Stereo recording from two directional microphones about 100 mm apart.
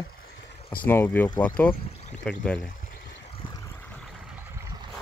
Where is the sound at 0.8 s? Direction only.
20° left (ahead or behind).